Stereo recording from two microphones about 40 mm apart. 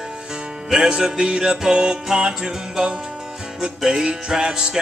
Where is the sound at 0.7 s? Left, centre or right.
Centre.